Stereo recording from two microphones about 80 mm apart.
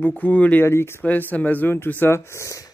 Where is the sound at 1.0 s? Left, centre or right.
Centre; by 2.6 s left.